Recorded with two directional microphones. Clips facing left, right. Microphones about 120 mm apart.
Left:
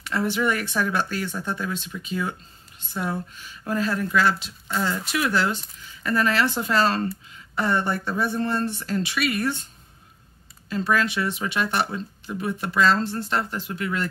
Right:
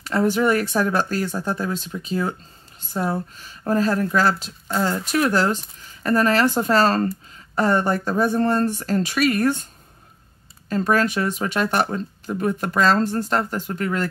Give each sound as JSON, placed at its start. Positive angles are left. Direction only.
{"t": 0.0, "sound": "speech", "side_deg": -40}
{"t": 10.7, "sound": "speech", "side_deg": -45}